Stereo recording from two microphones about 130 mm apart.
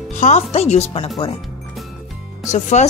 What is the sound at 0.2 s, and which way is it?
Speech, 60° left (ahead or behind).